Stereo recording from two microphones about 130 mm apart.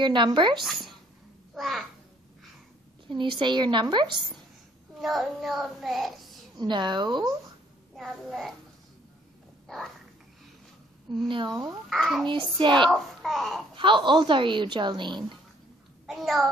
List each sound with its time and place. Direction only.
0.0 s speech: 35° right (ahead or behind)
1.5 s babbling: centre (ahead or behind)
3.1 s speech: 40° right (ahead or behind)
4.9 s a child's voice: centre (ahead or behind)
6.5 s speech: 35° right (ahead or behind)
7.9 s a child's voice: centre (ahead or behind)
9.7 s a sound: centre (ahead or behind)
11.2 s speech: 35° right (ahead or behind)
11.9 s a child's voice: centre (ahead or behind)
12.5 s speech: 35° right (ahead or behind)
12.9 s a child's voice: centre (ahead or behind)
13.7 s speech: 40° right (ahead or behind)
16.1 s a child's voice: centre (ahead or behind)